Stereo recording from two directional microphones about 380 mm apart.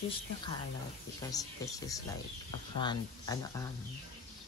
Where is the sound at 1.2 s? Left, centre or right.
Centre.